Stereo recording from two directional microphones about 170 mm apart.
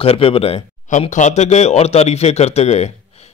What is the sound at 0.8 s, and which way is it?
A man's voice, 45° left (ahead or behind).